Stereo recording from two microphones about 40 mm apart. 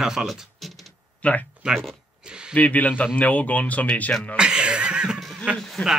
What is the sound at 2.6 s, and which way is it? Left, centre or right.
Speech, left.